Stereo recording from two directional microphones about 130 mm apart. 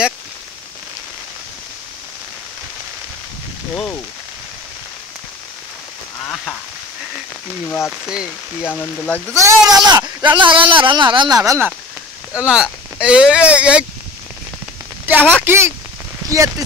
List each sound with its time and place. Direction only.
3.7 s speech: 10° left (ahead or behind)
8.6 s speech: 15° left (ahead or behind)
9.3 s a man's voice: 25° right (ahead or behind)
12.4 s speech: 10° right (ahead or behind)
15.0 s a woman's voice: 15° right (ahead or behind)